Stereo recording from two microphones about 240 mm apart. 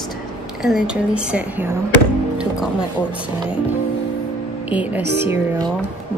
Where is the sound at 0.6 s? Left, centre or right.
Centre.